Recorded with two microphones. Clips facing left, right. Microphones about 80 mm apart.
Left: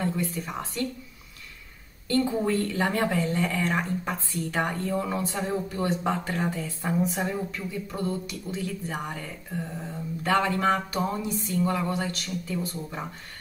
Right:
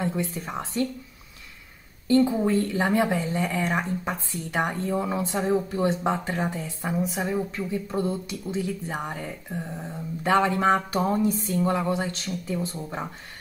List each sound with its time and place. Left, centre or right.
0.0 s speech: right
2.0 s speech: centre
7.0 s a woman's voice: centre
7.5 s speech: right
11.0 s music: right
11.5 s speech: right